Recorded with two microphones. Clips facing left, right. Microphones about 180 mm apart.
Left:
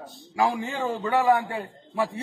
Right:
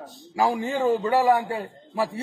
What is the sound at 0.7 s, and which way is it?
Speech, 15° right (ahead or behind).